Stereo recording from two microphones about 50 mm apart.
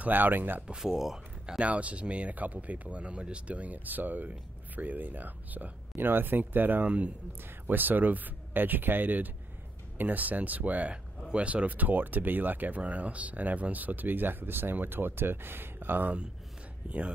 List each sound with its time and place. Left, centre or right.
0.0 s speech: right
0.7 s speech: centre; by 16.2 s right
16.8 s speech: right